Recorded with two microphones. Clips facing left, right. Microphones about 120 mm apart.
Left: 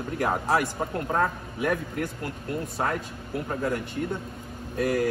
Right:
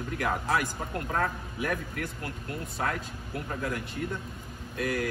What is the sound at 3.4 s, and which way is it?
Speech, 40° left (ahead or behind).